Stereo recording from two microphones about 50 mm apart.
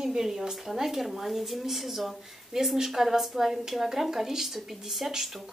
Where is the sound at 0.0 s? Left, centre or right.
Centre.